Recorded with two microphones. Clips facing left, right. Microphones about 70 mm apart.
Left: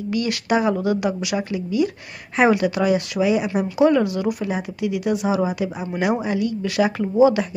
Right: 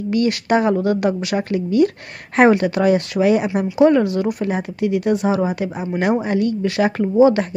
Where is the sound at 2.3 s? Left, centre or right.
Right.